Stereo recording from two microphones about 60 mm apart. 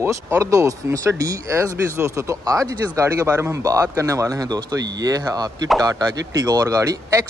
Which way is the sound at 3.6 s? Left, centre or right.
Right.